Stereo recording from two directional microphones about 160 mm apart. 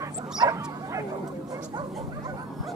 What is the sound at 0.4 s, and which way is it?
Dog, 25° right (ahead or behind).